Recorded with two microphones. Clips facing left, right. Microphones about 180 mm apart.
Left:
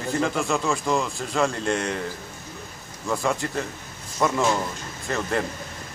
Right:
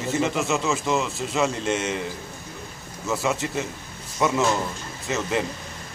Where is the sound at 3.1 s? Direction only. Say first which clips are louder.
Even; 5° right (ahead or behind).